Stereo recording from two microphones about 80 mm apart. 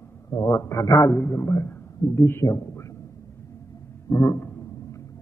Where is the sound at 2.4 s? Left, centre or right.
Left.